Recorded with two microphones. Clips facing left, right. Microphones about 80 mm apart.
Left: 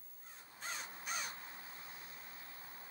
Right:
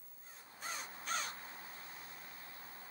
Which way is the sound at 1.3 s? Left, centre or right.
Right.